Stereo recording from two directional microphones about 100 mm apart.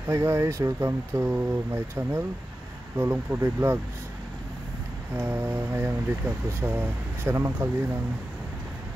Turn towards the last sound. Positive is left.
turn(degrees=-25)  # may be behind; listen again after turning